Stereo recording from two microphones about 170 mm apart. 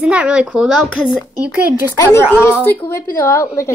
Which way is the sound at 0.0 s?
5° right (ahead or behind).